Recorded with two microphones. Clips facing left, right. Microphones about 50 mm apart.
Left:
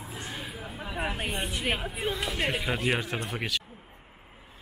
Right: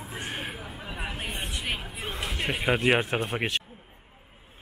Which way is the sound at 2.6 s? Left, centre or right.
Right.